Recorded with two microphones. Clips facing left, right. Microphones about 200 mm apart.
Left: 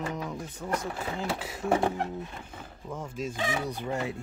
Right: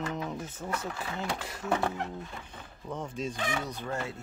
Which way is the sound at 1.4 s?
10° left (ahead or behind).